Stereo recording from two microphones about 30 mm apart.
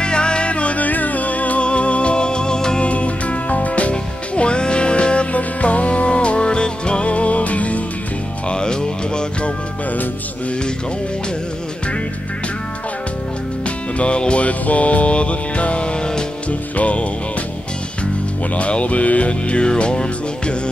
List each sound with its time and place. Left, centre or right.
0.0 s music: left
0.5 s music: left
0.8 s music: left
1.6 s music: left
2.8 s music: left
5.3 s music: left
8.5 s music: left
13.9 s music: left
14.4 s music: left
16.7 s music: left
18.6 s music: left